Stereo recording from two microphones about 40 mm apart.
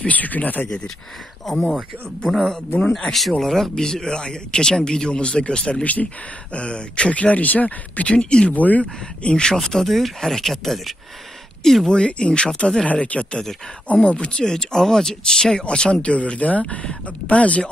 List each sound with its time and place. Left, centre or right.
0.0 s speech: left
1.7 s speech: centre; by 8.2 s left
8.2 s speech: left
8.5 s speech: left
9.2 s speech: left
11.9 s speech: left
12.8 s speech: left
13.3 s speech: centre
13.9 s speech: left
14.4 s speech: centre; by 17.6 s left